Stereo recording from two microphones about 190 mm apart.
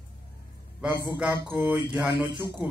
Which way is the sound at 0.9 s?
25° left (ahead or behind).